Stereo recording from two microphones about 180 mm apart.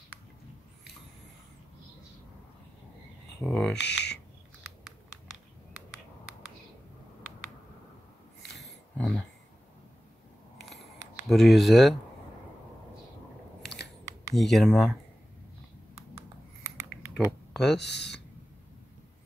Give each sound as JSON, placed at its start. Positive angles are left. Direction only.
{"t": 3.4, "sound": "speech", "side_deg": 0}
{"t": 3.8, "sound": "speech", "side_deg": 70}
{"t": 4.8, "sound": "computer keyboard", "side_deg": -5}
{"t": 8.9, "sound": "speech", "side_deg": 5}
{"t": 11.2, "sound": "speech", "side_deg": 0}
{"t": 14.3, "sound": "speech", "side_deg": 0}
{"t": 16.6, "sound": "typing", "side_deg": -15}
{"t": 17.7, "sound": "speech", "side_deg": 70}